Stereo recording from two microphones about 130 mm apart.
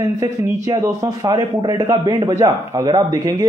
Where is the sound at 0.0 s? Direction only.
30° right (ahead or behind).